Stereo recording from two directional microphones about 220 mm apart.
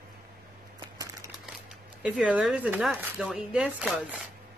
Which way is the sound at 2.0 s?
5° right (ahead or behind).